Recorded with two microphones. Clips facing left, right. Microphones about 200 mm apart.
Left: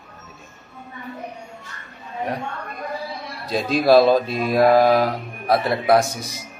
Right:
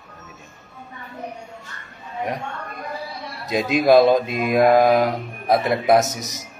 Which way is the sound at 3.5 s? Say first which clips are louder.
Even; 20° right (ahead or behind).